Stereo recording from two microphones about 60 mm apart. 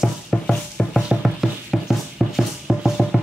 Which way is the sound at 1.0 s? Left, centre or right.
Centre.